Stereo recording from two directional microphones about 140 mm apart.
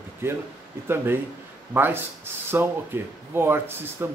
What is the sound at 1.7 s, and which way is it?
A man's voice, 15° right (ahead or behind).